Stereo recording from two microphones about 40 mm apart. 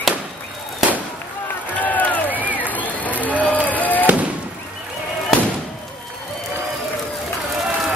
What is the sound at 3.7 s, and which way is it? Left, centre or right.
Fireworks, left.